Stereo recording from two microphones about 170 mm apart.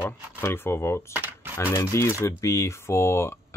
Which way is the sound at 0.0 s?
15° left (ahead or behind).